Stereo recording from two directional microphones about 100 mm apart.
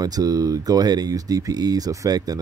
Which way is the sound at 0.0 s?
40° right (ahead or behind).